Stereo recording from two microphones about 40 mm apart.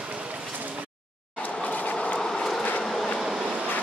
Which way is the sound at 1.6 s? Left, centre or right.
Left.